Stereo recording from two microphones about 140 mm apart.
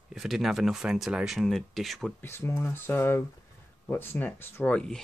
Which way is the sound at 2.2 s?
15° left (ahead or behind).